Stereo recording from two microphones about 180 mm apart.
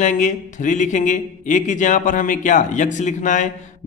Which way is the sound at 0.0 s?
45° left (ahead or behind).